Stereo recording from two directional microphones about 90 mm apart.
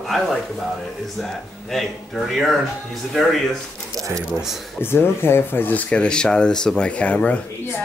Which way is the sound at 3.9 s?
40° right (ahead or behind).